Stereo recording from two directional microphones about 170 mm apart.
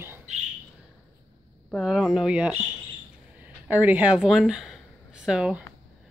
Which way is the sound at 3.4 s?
10° right (ahead or behind).